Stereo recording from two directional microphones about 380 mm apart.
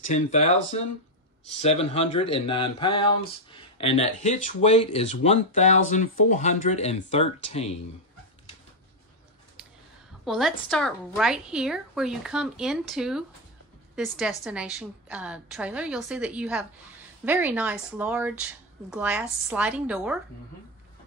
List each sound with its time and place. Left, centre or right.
0.0 s speech: centre
10.2 s a woman's voice: centre